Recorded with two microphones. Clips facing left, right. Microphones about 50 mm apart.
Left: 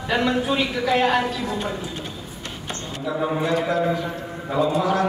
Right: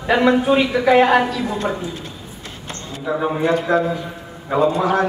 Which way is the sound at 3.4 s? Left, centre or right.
Right.